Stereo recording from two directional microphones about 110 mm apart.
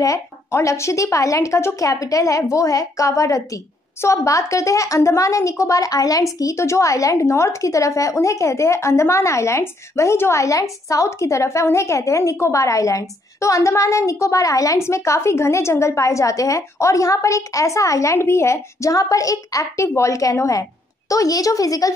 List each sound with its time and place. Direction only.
0.0 s a woman's voice: 30° left (ahead or behind)